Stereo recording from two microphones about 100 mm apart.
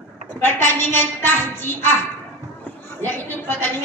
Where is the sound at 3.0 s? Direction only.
20° left (ahead or behind).